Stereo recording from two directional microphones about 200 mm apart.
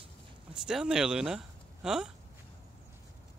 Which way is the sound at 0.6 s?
5° right (ahead or behind).